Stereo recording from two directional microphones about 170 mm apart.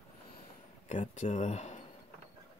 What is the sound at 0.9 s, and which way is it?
Speech, 45° left (ahead or behind).